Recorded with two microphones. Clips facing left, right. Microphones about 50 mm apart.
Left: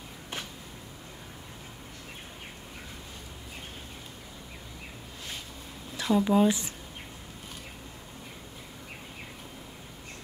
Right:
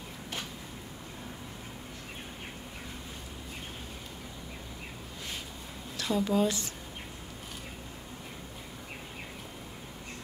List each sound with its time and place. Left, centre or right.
5.9 s speech: centre